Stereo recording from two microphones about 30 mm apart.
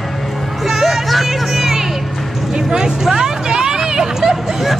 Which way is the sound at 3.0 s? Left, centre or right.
Centre.